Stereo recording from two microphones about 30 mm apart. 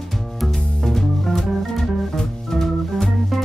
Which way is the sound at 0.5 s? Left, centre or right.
Centre.